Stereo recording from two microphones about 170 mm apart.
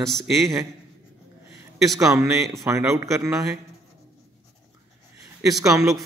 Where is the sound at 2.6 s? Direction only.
15° right (ahead or behind).